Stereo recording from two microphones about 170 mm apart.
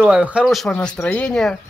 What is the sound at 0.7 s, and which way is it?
Speech, 10° left (ahead or behind).